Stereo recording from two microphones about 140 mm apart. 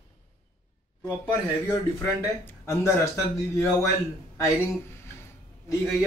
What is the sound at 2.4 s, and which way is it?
Speech, 20° left (ahead or behind).